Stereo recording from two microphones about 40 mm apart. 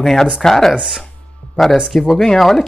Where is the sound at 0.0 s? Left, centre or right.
Centre.